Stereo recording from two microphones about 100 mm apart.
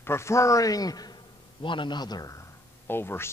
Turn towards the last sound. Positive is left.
turn(degrees=25)  # may be behind; listen again after turning